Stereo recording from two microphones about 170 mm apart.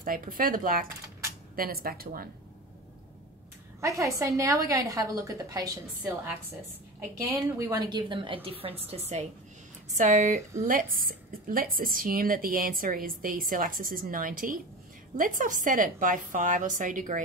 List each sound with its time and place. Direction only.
0.0 s speech: 55° right (ahead or behind)
3.8 s a woman's voice: 20° right (ahead or behind); by 17.2 s 50° right (ahead or behind)